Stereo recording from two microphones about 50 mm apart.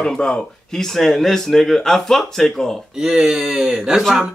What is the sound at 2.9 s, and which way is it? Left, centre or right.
Speech, centre.